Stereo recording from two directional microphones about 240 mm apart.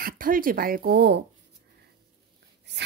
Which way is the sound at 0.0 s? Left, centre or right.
Right.